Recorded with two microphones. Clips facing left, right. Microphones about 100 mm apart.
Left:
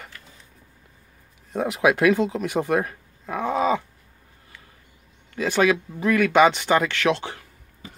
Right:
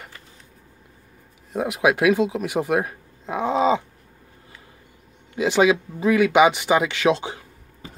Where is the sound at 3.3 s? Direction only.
20° right (ahead or behind).